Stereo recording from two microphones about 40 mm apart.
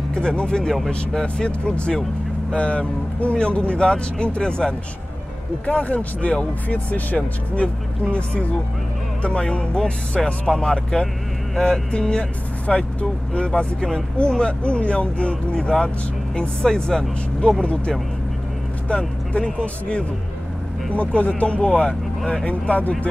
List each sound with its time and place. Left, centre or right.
0.1 s speech: left
5.7 s speech: left
9.2 s speech: left
10.5 s speech: centre
12.2 s speech: left
18.9 s speech: left